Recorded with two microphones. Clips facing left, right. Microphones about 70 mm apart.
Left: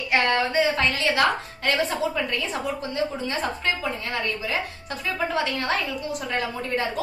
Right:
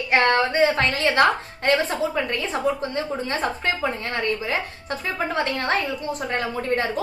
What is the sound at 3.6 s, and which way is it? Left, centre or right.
A woman's voice, right.